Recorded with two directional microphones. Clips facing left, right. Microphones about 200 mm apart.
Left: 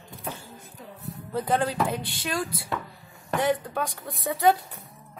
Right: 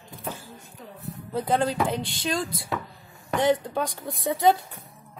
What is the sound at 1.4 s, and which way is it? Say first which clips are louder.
Speech: right 1 dB; 25° right (ahead or behind).